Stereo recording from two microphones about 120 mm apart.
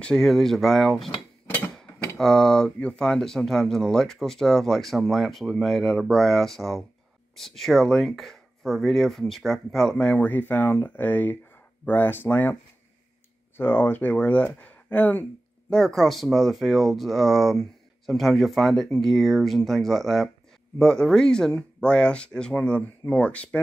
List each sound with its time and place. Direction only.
0.0 s speech: 5° left (ahead or behind)
13.6 s speech: 15° left (ahead or behind)
15.7 s speech: centre (ahead or behind)